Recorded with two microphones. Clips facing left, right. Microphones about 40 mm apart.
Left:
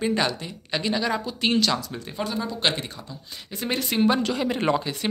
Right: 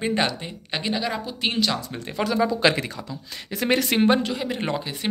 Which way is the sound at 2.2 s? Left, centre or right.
Right.